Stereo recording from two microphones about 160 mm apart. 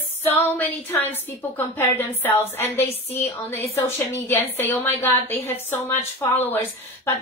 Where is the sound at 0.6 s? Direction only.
10° left (ahead or behind).